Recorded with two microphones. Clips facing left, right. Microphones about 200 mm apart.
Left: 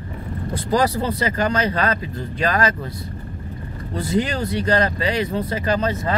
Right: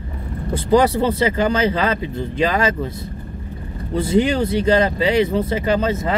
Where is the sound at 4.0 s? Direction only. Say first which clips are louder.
Right 5 dB; 25° right (ahead or behind).